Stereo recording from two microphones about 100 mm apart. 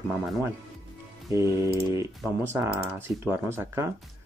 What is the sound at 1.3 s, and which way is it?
Speech, 30° right (ahead or behind).